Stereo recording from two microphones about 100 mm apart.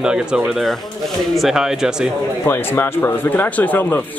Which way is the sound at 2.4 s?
25° left (ahead or behind).